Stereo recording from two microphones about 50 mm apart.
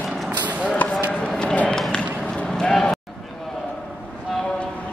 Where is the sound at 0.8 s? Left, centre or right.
Left.